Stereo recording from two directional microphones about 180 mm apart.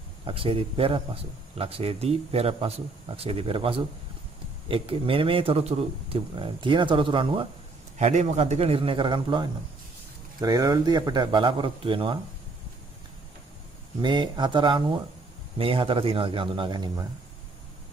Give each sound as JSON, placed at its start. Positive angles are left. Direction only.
{"t": 0.2, "sound": "speech", "side_deg": -30}
{"t": 8.0, "sound": "speech", "side_deg": -40}
{"t": 14.0, "sound": "speech", "side_deg": -25}